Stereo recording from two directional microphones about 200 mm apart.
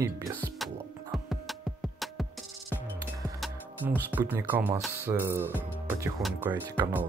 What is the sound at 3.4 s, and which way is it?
Speech, 10° right (ahead or behind).